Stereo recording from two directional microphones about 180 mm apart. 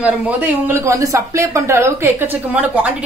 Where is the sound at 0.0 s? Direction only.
10° right (ahead or behind).